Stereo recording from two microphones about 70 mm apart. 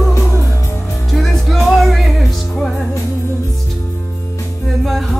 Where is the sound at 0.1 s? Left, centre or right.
Left.